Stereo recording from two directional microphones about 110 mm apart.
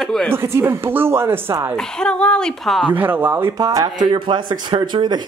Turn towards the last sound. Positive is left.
turn(degrees=-45)  # may be behind; listen again after turning